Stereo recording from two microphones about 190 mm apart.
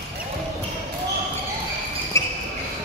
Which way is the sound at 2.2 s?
15° left (ahead or behind).